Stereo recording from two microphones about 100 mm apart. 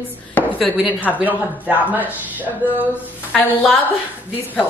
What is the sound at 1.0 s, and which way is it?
A woman's voice, 15° right (ahead or behind).